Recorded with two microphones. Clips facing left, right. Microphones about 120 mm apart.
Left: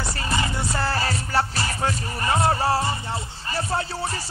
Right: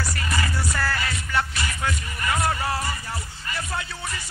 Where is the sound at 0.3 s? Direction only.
25° left (ahead or behind).